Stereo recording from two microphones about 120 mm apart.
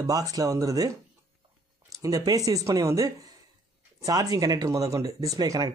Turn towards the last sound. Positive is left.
turn(degrees=-30)  # may be behind; listen again after turning